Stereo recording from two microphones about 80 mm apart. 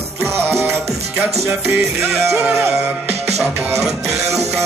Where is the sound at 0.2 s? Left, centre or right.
Right.